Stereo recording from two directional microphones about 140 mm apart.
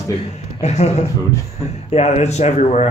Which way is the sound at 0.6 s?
50° left (ahead or behind).